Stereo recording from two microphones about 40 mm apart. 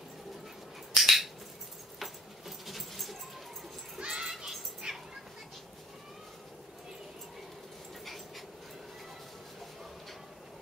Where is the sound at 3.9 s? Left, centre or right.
Right.